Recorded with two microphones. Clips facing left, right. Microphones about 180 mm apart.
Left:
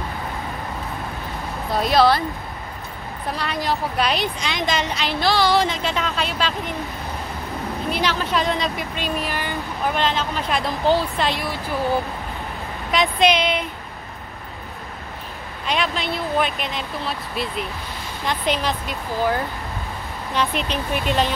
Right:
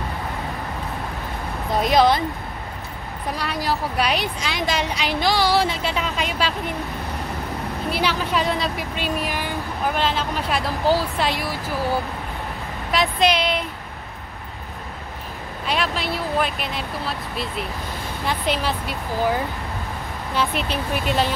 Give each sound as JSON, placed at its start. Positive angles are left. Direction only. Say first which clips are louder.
{"t": 1.7, "sound": "a woman's voice", "louder": "even", "side_deg": -15}
{"t": 3.3, "sound": "a woman's voice", "louder": "left 1 dB", "side_deg": -5}
{"t": 7.9, "sound": "a woman's voice", "louder": "even", "side_deg": -10}
{"t": 12.9, "sound": "speech", "louder": "left 1 dB", "side_deg": 0}
{"t": 15.6, "sound": "speech", "louder": "left 1 dB", "side_deg": 0}